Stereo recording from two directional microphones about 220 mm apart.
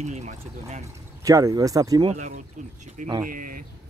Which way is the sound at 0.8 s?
15° right (ahead or behind).